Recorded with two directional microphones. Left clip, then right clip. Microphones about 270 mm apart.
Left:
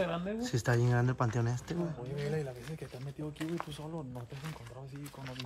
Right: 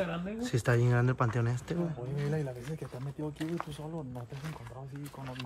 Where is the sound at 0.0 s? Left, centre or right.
Left.